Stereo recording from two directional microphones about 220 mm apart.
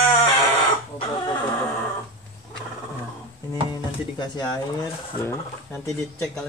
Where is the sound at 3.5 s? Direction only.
20° left (ahead or behind).